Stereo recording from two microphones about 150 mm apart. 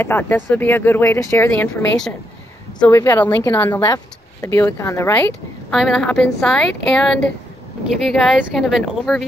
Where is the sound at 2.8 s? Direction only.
15° left (ahead or behind).